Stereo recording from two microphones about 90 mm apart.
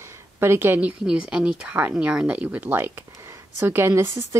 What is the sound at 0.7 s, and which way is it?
Speech, 10° right (ahead or behind).